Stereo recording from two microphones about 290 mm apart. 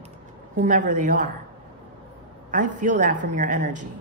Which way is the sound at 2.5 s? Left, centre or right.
Right.